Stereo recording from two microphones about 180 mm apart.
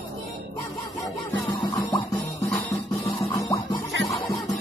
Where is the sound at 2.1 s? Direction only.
10° left (ahead or behind).